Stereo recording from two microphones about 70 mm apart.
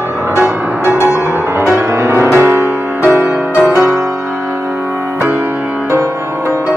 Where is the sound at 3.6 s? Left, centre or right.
Right.